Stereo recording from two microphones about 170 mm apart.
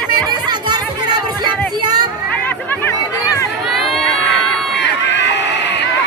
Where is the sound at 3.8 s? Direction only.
Centre (ahead or behind).